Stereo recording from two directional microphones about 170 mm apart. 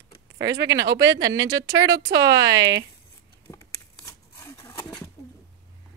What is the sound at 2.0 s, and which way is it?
Speech, 90° right.